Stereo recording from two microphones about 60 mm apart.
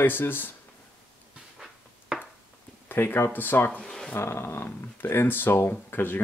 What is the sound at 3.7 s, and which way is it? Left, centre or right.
Speech, centre.